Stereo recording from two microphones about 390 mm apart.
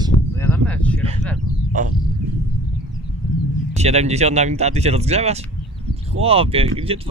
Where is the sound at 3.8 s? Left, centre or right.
Centre.